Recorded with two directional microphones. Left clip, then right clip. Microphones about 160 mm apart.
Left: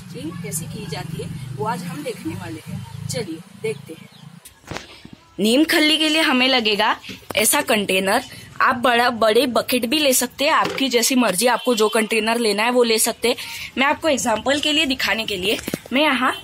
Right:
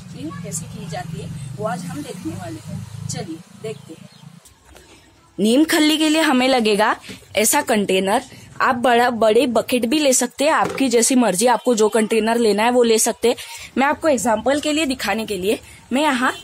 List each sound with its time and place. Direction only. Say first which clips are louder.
5.4 s speech: even; 40° right (ahead or behind); by 7.0 s 80° right
7.3 s speech: right 1 dB; 40° right (ahead or behind)